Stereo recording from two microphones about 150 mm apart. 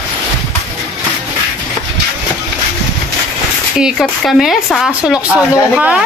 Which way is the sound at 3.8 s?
Centre (ahead or behind).